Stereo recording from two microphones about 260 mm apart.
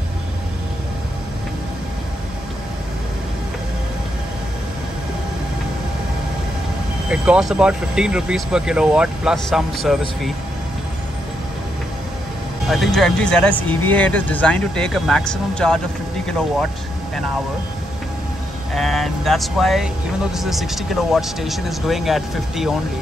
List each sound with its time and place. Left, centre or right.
7.1 s speech: centre
12.6 s speech: centre
18.8 s speech: centre